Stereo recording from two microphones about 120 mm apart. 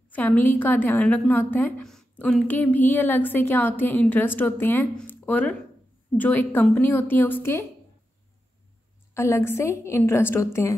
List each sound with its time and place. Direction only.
0.1 s a woman's voice: 15° left (ahead or behind)
1.9 s a sound: 10° left (ahead or behind)
2.4 s a woman's voice: 15° left (ahead or behind)
9.1 s a woman's voice: 25° left (ahead or behind)